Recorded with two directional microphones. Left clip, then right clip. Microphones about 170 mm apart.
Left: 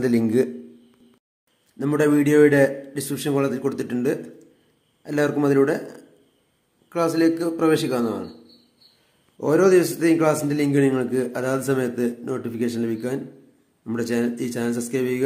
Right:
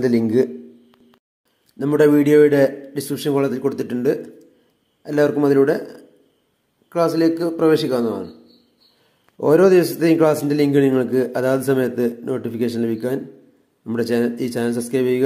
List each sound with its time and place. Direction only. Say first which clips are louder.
0.2 s a man's voice: right 3 dB; 5° right (ahead or behind)
1.8 s a man's voice: right 5 dB; 15° right (ahead or behind)
6.9 s a man's voice: right 3 dB; 10° right (ahead or behind)
9.4 s a man's voice: right 4 dB; 20° right (ahead or behind)